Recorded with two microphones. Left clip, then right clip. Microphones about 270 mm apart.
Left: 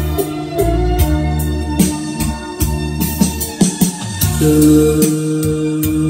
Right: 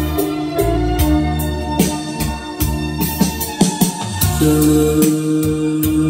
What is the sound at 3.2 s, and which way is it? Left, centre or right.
Music, right.